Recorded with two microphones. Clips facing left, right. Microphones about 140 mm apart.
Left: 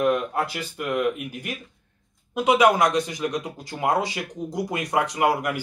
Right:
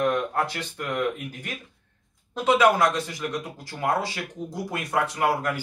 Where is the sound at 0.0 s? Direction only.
10° left (ahead or behind).